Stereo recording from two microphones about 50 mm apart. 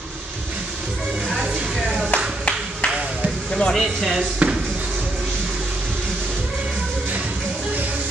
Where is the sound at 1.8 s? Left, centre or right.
Centre.